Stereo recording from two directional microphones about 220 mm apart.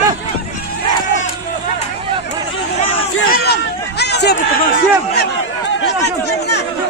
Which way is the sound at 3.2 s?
45° left (ahead or behind).